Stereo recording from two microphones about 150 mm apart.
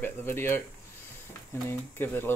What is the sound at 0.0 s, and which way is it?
Speech, 15° left (ahead or behind).